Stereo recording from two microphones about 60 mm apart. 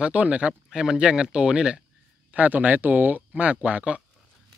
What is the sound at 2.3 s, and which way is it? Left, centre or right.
Speech, right.